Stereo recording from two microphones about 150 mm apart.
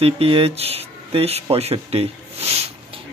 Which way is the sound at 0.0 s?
40° right (ahead or behind).